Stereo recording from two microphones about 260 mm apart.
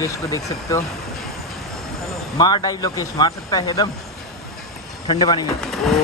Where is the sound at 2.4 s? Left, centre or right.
Centre.